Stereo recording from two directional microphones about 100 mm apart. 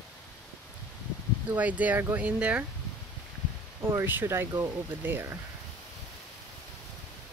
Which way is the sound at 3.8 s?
25° right (ahead or behind).